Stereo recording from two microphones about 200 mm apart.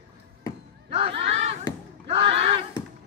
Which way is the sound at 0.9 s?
30° right (ahead or behind).